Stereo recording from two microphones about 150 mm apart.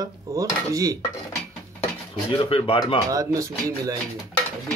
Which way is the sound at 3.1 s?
20° right (ahead or behind).